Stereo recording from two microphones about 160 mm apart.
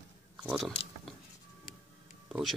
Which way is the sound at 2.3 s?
Centre (ahead or behind).